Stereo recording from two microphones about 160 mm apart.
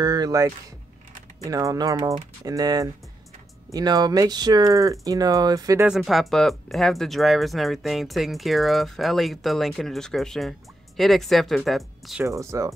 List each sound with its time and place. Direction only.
0.0 s speech: 25° right (ahead or behind)
5.9 s speech: centre (ahead or behind)
12.3 s speech: 20° right (ahead or behind)